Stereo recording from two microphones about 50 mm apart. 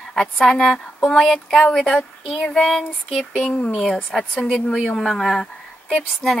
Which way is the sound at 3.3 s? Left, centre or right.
Left.